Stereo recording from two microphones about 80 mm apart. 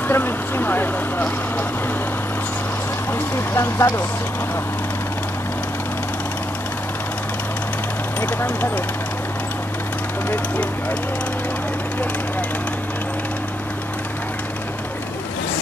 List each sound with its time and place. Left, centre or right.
0.1 s speech: left
3.1 s speech: left
8.2 s speech: left